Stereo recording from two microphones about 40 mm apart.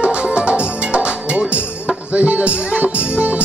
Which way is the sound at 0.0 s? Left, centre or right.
Right.